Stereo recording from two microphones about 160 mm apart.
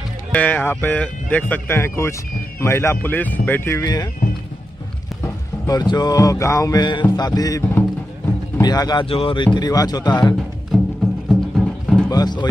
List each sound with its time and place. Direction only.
0.3 s speech: 10° left (ahead or behind)
5.2 s a sound: 25° left (ahead or behind)
10.7 s music: 5° left (ahead or behind)
12.1 s music: 25° left (ahead or behind)